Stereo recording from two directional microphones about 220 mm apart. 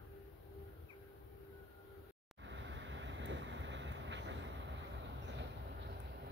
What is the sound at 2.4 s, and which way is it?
Vehicle, 55° right (ahead or behind).